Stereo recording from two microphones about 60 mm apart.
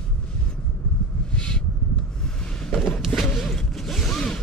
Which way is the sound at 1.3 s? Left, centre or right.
Centre.